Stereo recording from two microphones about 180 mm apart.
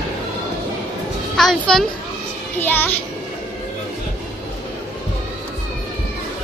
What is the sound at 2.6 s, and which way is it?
Speech, 10° left (ahead or behind).